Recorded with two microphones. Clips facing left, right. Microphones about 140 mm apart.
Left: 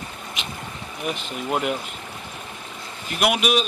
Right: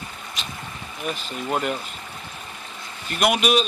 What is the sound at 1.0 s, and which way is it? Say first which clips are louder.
Speech: left 1 dB; 15° left (ahead or behind).